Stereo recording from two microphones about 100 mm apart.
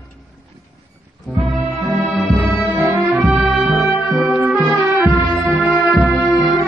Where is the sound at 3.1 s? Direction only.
Centre (ahead or behind).